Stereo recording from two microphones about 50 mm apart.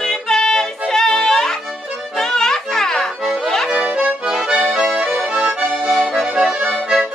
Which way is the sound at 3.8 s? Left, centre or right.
Centre.